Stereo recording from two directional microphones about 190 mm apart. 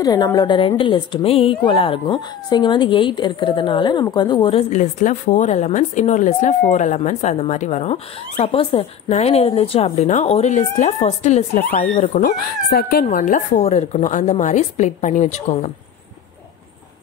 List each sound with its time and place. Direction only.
0.0 s a woman's voice: 20° left (ahead or behind); by 15.7 s 35° left (ahead or behind)